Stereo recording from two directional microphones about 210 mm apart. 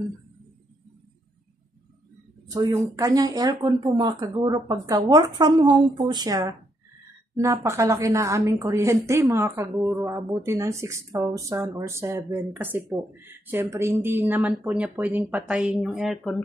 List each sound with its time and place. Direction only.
2.5 s a woman's voice: 15° right (ahead or behind); by 16.4 s centre (ahead or behind)